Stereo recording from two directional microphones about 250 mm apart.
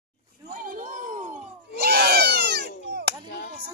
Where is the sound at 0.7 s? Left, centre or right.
Right.